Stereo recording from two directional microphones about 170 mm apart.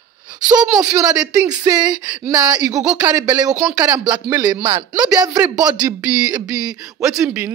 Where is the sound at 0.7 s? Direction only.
20° right (ahead or behind).